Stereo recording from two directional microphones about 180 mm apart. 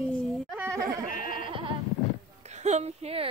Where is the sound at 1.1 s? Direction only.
50° left (ahead or behind).